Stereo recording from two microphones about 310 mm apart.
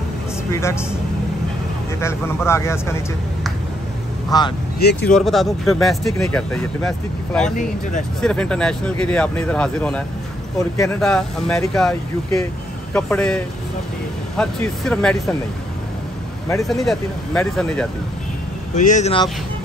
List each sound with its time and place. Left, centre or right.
0.5 s speech: centre
2.0 s speech: centre
4.3 s speech: centre
4.7 s speech: left
5.1 s speech: centre
8.2 s speech: centre
16.4 s speech: centre
18.8 s speech: left